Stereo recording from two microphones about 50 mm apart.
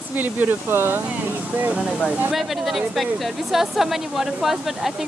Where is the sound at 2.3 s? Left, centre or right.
Centre.